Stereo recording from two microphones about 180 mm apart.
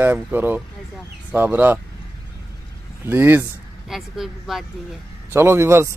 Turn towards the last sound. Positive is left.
turn(degrees=-15)  # may be behind; listen again after turning